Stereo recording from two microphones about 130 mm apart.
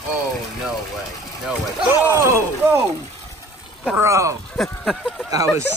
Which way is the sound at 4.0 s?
25° right (ahead or behind).